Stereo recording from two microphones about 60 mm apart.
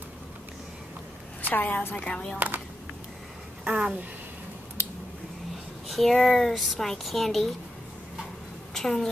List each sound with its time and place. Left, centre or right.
1.5 s a woman's voice: left
2.3 s speech: right
3.6 s a sound: centre
5.9 s speech: centre
8.7 s a woman's voice: centre